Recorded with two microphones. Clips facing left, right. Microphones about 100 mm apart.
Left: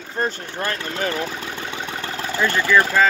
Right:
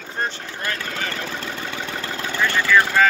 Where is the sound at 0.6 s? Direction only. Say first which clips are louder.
Left 3 dB; 30° left (ahead or behind).